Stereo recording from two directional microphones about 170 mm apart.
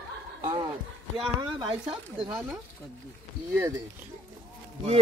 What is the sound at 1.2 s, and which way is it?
Speech, 25° right (ahead or behind).